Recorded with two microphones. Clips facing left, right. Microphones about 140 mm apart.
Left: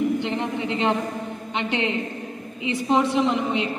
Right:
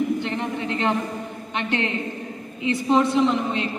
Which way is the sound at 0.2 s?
20° left (ahead or behind).